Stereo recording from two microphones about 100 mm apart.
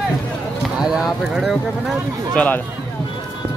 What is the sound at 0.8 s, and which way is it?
Speech, 5° right (ahead or behind).